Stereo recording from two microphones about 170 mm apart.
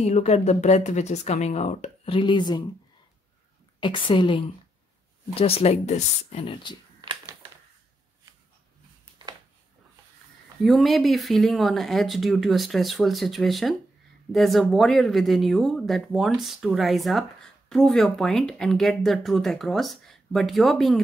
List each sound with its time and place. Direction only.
0.0 s speech: 40° left (ahead or behind)
3.8 s a woman's voice: 30° left (ahead or behind)
7.0 s a sound: 25° right (ahead or behind)
10.6 s speech: centre (ahead or behind)